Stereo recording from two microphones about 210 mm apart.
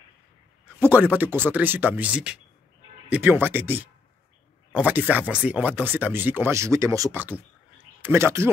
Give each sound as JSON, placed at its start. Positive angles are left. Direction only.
{"t": 0.7, "sound": "speech", "side_deg": -10}